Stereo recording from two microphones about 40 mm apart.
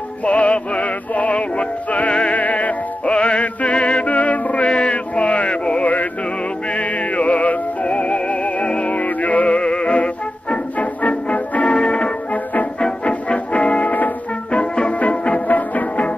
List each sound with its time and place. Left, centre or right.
0.2 s music: left
2.3 s music: left
3.1 s music: left
14.5 s music: left